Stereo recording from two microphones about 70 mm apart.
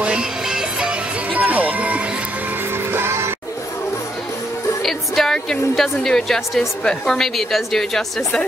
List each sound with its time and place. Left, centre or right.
0.0 s music: centre
2.9 s music: right
4.8 s a woman's voice: centre